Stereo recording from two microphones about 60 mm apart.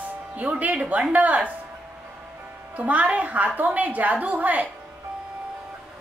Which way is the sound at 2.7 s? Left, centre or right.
Right.